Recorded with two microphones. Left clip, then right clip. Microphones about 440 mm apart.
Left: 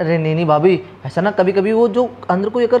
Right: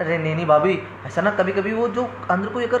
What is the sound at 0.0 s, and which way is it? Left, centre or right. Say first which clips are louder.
Speech: left 5 dB; left.